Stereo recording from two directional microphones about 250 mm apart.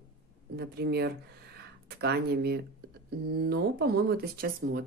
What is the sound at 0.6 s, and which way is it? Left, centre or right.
Speech, right.